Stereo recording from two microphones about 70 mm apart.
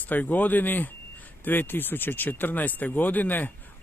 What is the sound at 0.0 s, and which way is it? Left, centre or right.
Speech, left.